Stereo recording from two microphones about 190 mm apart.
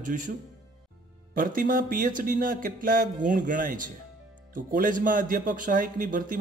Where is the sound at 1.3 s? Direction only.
45° right (ahead or behind).